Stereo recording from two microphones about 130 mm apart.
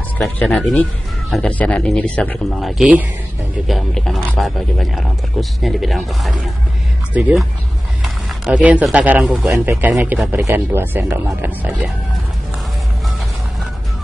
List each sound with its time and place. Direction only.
0.4 s speech: 5° left (ahead or behind)
2.6 s speech: 10° right (ahead or behind)
8.0 s a sound: 5° right (ahead or behind)
8.8 s speech: 10° right (ahead or behind)
9.5 s speech: 15° right (ahead or behind)